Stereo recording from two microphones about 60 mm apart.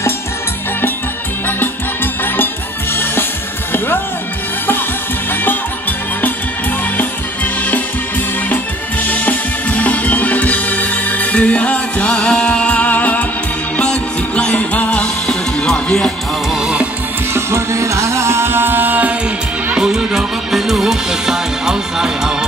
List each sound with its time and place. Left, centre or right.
2.2 s music: left
5.3 s music: left
9.0 s music: left
15.2 s music: centre
16.5 s music: centre
17.3 s music: right
19.7 s music: centre